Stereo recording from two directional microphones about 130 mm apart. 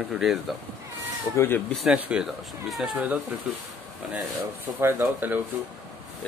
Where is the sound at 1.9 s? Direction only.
5° right (ahead or behind).